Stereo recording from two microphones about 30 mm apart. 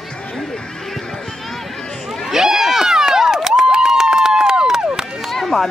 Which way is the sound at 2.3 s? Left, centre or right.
Centre.